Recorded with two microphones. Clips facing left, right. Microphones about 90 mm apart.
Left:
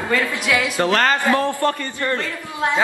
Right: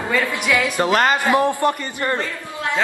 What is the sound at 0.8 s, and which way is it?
A man's voice, 15° right (ahead or behind).